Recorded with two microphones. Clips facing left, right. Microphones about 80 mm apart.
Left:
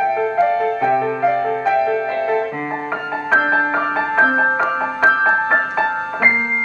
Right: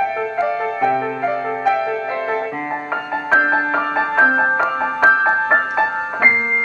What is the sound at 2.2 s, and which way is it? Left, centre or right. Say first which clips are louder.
Music: left 2 dB; centre.